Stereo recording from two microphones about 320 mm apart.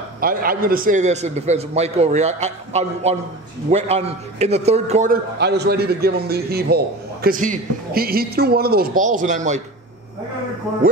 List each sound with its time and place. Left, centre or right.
0.2 s a man's voice: right